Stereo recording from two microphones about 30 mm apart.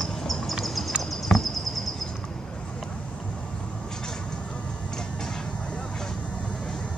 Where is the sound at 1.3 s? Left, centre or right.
Centre.